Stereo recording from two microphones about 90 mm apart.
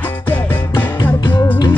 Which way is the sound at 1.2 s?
55° left (ahead or behind).